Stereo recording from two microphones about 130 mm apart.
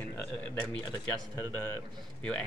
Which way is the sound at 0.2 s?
15° left (ahead or behind).